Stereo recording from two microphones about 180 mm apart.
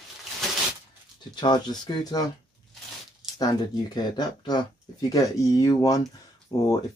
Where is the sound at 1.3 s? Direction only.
25° left (ahead or behind).